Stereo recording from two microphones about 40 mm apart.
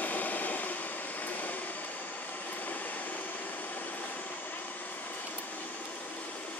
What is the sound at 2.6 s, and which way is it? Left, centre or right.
Vehicle, left.